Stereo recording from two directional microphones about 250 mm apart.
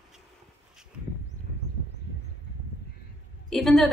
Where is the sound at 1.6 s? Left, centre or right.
Left.